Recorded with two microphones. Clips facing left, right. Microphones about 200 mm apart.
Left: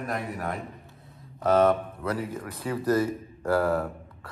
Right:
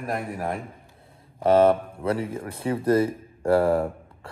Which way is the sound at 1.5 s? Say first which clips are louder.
Right 3 dB; 30° right (ahead or behind).